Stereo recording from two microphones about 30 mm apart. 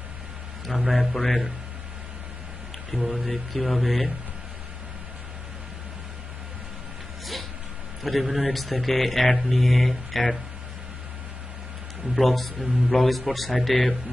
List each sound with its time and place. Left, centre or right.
0.7 s a man's voice: centre
2.9 s a man's voice: centre
8.0 s a man's voice: centre
12.2 s a man's voice: centre